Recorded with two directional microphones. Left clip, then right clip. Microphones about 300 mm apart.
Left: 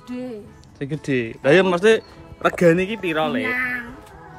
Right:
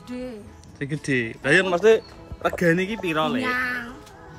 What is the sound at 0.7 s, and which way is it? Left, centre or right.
Speech, centre.